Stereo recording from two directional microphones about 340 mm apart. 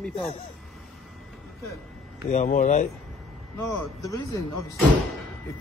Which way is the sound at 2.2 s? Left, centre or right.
Left.